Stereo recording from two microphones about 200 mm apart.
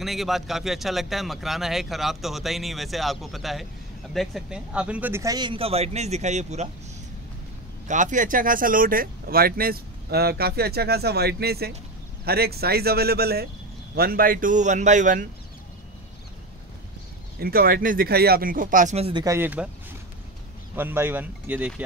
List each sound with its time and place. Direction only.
0.0 s speech: centre (ahead or behind); by 6.7 s 35° right (ahead or behind)
7.9 s a man's voice: 40° right (ahead or behind)
17.4 s speech: 50° right (ahead or behind); by 19.2 s 30° right (ahead or behind)
19.2 s speech: 10° right (ahead or behind)
20.7 s speech: 10° right (ahead or behind)